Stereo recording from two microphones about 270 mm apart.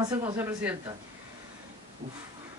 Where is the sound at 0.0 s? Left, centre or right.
Centre.